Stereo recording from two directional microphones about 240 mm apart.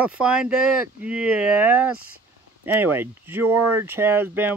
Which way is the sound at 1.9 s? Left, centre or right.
Right.